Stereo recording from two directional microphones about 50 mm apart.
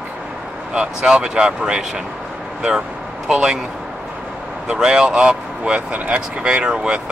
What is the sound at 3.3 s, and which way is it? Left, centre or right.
Speech, centre.